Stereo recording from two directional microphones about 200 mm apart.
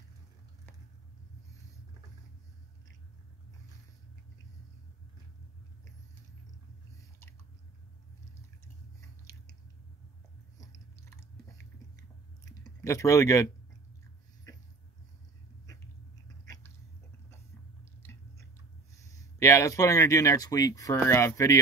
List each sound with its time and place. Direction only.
9.2 s chewing: 15° left (ahead or behind)
10.6 s chewing: 15° left (ahead or behind)
12.4 s a sound: 15° left (ahead or behind)
16.4 s cat: 15° left (ahead or behind)
18.9 s speech: 15° left (ahead or behind)